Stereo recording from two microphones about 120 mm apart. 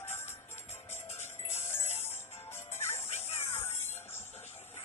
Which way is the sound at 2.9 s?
60° left (ahead or behind).